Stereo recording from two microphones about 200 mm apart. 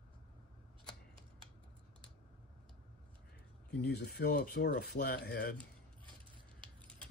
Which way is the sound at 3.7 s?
55° left (ahead or behind).